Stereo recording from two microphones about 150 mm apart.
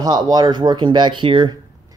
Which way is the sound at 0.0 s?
25° right (ahead or behind).